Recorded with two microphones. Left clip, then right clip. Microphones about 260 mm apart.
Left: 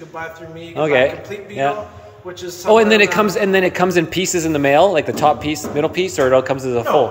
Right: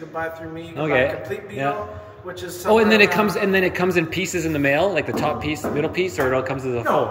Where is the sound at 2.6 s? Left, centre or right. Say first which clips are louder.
Left 4 dB; centre.